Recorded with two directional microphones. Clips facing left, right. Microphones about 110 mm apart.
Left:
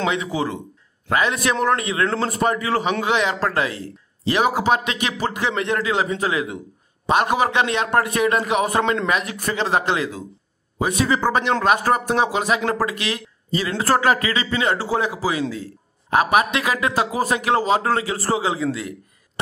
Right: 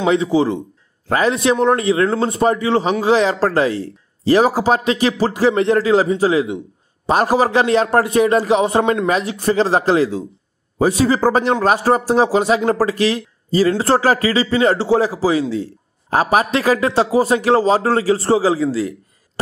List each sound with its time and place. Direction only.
0.0 s a man's voice: 30° right (ahead or behind)